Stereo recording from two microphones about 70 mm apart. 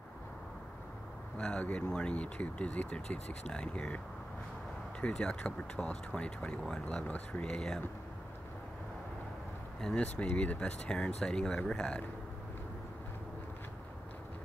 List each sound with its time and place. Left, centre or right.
1.4 s speech: centre
5.0 s speech: centre
9.8 s speech: centre